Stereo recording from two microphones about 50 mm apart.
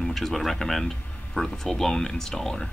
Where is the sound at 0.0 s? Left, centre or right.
Centre.